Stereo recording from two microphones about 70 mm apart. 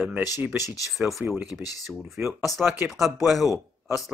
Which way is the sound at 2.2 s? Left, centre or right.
Right.